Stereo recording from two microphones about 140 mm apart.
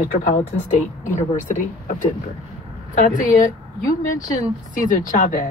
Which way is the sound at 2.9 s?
70° left (ahead or behind).